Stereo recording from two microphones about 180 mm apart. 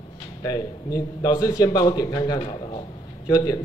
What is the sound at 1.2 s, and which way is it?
A man's voice, 20° left (ahead or behind).